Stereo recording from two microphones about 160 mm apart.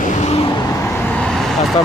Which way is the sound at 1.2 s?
Centre (ahead or behind).